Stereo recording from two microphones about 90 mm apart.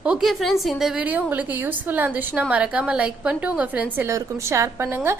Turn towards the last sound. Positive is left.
turn(degrees=-30)  # may be behind; listen again after turning